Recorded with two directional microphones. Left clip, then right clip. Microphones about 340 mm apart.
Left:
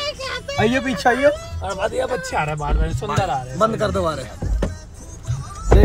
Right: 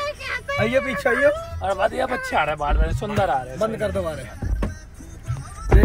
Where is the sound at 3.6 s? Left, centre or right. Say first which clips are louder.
Left 5 dB; centre.